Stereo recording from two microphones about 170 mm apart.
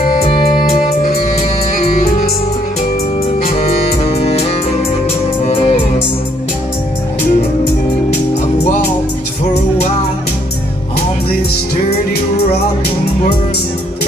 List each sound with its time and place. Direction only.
0.7 s music: 50° left (ahead or behind)
3.6 s music: 35° left (ahead or behind)